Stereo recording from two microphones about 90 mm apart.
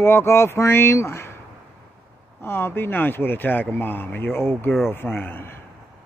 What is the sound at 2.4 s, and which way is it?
Speech, 25° left (ahead or behind).